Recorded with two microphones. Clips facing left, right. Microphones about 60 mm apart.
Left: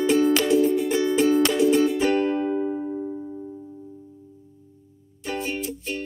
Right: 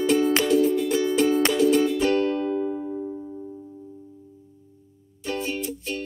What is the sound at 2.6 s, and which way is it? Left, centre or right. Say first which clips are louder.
Music: left 1 dB; centre.